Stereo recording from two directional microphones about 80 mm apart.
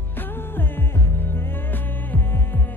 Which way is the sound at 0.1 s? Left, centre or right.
Left.